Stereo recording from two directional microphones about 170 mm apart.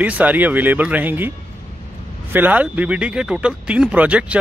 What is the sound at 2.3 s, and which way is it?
Speech, 10° right (ahead or behind).